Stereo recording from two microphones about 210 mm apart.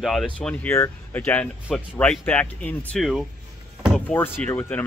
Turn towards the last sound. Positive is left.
turn(degrees=10)  # may be behind; listen again after turning